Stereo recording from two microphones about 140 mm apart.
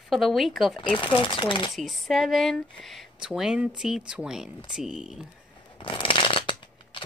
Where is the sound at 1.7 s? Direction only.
Centre (ahead or behind).